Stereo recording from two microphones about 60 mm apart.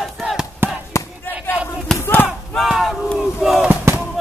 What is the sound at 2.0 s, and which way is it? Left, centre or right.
Battle cry, left.